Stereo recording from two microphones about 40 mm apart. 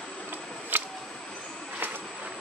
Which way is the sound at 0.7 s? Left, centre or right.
Right.